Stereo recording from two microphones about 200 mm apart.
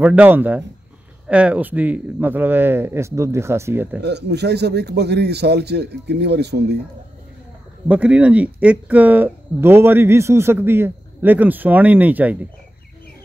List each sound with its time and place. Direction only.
0.0 s speech: 10° right (ahead or behind)
4.0 s a man's voice: 55° right (ahead or behind)
7.9 s speech: 5° right (ahead or behind)